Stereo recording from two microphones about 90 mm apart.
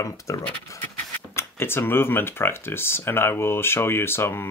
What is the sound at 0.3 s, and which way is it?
Speech, 35° left (ahead or behind).